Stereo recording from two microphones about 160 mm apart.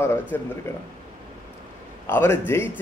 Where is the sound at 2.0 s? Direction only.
15° left (ahead or behind).